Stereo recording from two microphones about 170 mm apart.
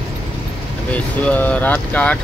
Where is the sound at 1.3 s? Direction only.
10° left (ahead or behind).